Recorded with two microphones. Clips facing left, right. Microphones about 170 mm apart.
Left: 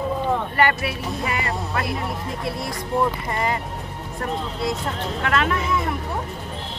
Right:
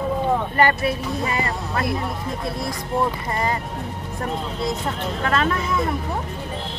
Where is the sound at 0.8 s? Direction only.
35° right (ahead or behind).